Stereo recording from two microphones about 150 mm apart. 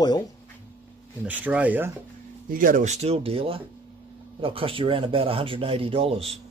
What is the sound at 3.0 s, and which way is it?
Speech, 40° right (ahead or behind).